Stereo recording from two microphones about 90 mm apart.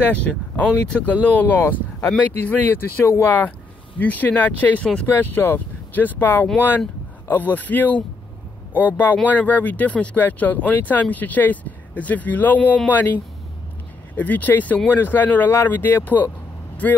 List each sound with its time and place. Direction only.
0.0 s speech: 15° left (ahead or behind)